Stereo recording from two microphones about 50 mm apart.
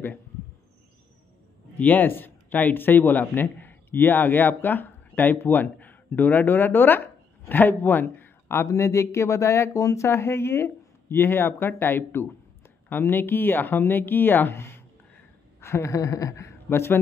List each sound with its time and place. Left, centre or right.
1.8 s speech: left
8.6 s speech: left
15.6 s a sound: left
16.6 s speech: left